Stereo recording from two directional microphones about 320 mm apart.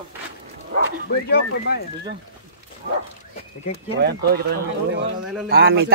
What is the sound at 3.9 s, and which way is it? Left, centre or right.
A man's voice, right.